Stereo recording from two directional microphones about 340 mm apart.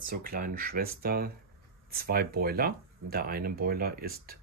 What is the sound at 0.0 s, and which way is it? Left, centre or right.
Speech, right.